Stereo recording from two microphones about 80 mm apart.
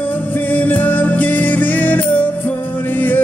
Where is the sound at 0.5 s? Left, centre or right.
Left.